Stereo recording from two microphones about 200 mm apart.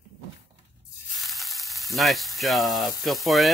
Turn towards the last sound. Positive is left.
turn(degrees=0)  # may be behind; listen again after turning